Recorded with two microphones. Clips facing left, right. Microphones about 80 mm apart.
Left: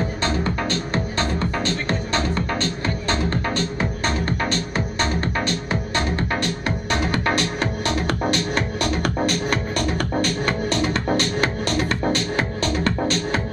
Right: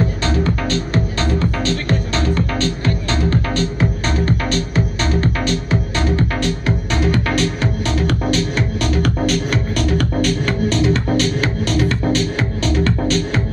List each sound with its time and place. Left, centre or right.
1.6 s music: left
4.3 s music: left
7.1 s music: left